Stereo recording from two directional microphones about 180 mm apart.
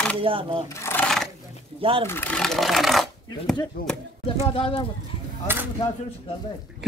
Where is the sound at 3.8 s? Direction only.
50° left (ahead or behind).